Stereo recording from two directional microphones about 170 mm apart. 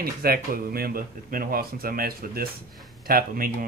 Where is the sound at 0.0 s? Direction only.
60° right (ahead or behind).